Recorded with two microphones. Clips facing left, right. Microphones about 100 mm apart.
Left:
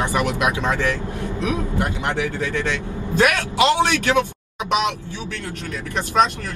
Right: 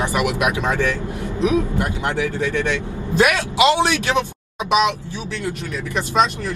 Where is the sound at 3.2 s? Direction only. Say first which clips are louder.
Right 2 dB; 15° right (ahead or behind).